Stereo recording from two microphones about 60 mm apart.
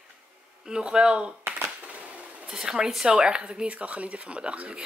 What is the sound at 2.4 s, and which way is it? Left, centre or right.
Speech, centre.